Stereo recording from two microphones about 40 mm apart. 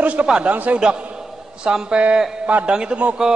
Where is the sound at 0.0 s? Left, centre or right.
Right.